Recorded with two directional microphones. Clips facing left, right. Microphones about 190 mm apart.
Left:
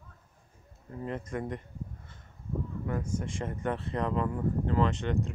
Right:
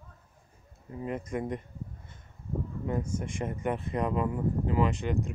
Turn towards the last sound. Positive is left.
turn(degrees=-10)  # may be behind; listen again after turning